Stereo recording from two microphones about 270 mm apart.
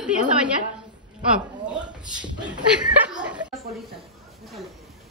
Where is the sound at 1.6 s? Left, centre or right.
Centre.